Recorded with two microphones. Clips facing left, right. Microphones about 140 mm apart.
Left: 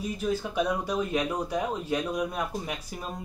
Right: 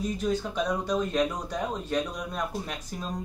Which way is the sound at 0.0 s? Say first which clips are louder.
Right 1 dB; 10° left (ahead or behind).